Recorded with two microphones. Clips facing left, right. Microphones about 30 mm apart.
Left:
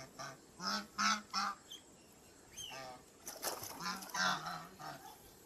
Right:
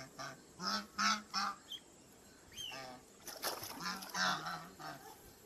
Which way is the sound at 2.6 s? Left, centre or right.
Centre.